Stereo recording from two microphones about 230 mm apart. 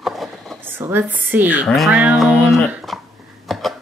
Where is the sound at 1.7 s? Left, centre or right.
Centre.